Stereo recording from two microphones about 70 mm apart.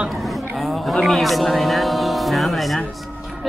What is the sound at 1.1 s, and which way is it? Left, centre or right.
Speech, centre.